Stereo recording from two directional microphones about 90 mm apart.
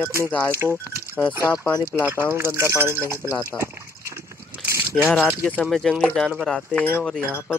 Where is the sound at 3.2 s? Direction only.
35° left (ahead or behind).